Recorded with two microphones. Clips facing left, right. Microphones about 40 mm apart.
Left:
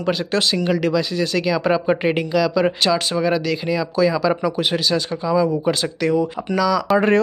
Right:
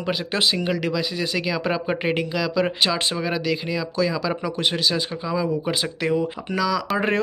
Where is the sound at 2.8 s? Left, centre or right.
Right.